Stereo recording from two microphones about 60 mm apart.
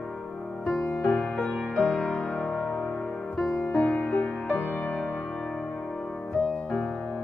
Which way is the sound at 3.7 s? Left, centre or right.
Left.